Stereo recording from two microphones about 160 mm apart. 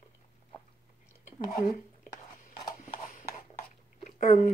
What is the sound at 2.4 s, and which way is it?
Clip-clop, 55° left (ahead or behind).